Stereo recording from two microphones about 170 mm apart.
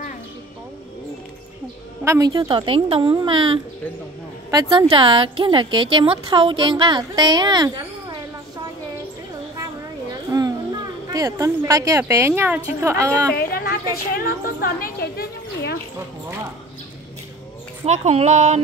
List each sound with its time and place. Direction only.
2.0 s a woman's voice: 20° right (ahead or behind)
10.3 s music: 20° right (ahead or behind)
11.1 s a woman's voice: 20° right (ahead or behind)
13.3 s a woman's voice: 60° left (ahead or behind)
17.8 s speech: 40° right (ahead or behind)